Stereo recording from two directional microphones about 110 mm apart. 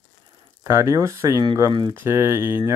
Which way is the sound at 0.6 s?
25° right (ahead or behind).